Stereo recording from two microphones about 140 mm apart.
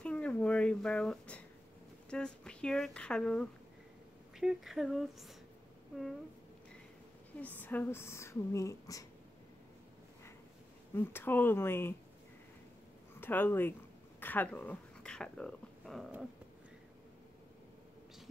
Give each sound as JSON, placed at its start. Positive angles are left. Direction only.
{"t": 0.0, "sound": "a sound", "side_deg": 10}
{"t": 2.0, "sound": "speech", "side_deg": 5}
{"t": 7.3, "sound": "speech", "side_deg": 10}
{"t": 11.0, "sound": "speech", "side_deg": 15}
{"t": 13.2, "sound": "speech", "side_deg": 15}